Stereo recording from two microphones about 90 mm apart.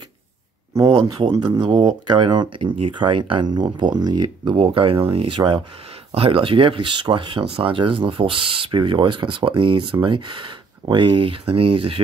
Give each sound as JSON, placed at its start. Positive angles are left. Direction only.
{"t": 0.7, "sound": "speech", "side_deg": -40}
{"t": 4.6, "sound": "speech", "side_deg": -90}
{"t": 5.4, "sound": "speech", "side_deg": -60}
{"t": 6.1, "sound": "speech", "side_deg": -85}